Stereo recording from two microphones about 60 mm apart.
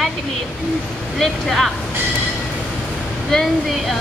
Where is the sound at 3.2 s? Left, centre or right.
Centre.